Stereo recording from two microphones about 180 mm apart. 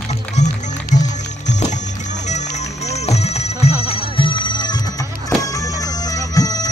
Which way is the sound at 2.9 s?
35° left (ahead or behind).